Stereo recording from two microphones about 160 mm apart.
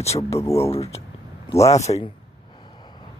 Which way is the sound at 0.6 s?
40° left (ahead or behind).